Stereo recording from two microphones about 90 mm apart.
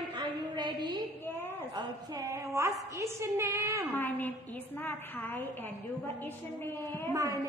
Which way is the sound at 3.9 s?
20° left (ahead or behind).